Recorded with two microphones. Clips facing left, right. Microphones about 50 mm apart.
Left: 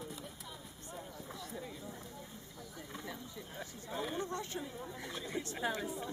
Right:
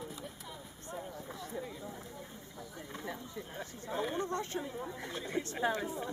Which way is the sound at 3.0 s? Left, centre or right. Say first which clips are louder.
Right 4 dB; right.